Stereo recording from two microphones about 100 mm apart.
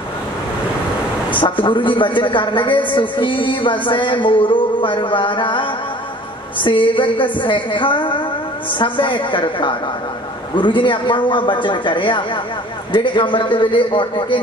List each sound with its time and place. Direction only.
1.4 s music: 55° left (ahead or behind)